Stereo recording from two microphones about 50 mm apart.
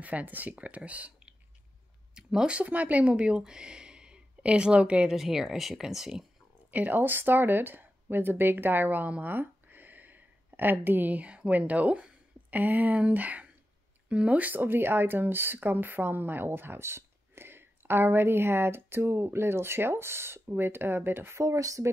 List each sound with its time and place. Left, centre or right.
0.0 s speech: right
2.1 s a woman's voice: centre
5.1 s speech: centre
6.7 s speech: right
20.4 s speech: right
21.4 s speech: right